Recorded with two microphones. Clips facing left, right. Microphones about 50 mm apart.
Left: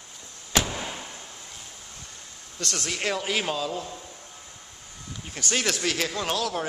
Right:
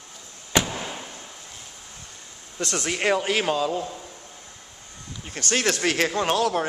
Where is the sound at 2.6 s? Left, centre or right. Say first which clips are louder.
Right 4 dB; centre.